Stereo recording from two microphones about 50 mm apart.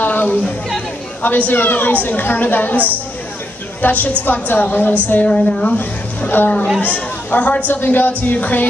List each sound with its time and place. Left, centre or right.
0.0 s chatter: left
1.5 s speech: left
3.8 s speech: left
5.3 s a woman's voice: left
5.8 s a woman's voice: left
7.7 s speech: left